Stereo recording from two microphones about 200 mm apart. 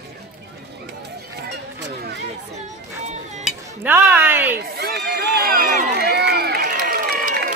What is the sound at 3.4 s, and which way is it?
Music, 10° right (ahead or behind).